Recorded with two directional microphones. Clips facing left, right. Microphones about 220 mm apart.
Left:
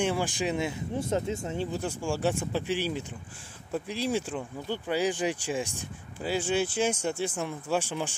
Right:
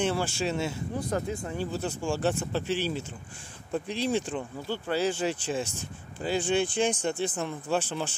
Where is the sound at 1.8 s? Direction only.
10° left (ahead or behind).